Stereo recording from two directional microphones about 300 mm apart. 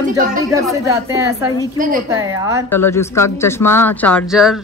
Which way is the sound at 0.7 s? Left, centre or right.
Centre.